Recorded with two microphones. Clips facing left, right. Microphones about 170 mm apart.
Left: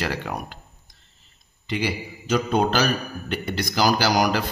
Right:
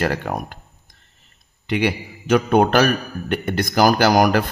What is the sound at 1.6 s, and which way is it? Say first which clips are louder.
Speech: right 5 dB; 60° right (ahead or behind).